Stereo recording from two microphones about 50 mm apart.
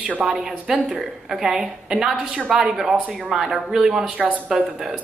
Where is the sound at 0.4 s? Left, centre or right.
Centre.